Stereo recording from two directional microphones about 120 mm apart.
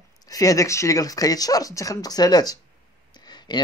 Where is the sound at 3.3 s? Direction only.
35° left (ahead or behind).